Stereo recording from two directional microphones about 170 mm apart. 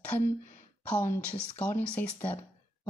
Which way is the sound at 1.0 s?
15° left (ahead or behind).